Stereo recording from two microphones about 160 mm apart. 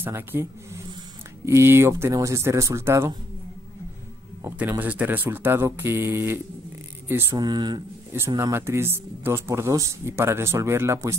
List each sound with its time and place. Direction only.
0.0 s speech: 15° right (ahead or behind)
4.4 s speech: 15° right (ahead or behind)
7.3 s speech: 25° right (ahead or behind)
8.1 s speech: 15° right (ahead or behind)